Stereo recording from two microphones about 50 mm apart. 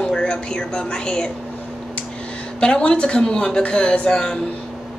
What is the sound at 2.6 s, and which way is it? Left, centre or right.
A woman's voice, centre.